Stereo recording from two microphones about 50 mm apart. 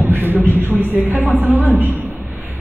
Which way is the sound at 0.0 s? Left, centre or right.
Right.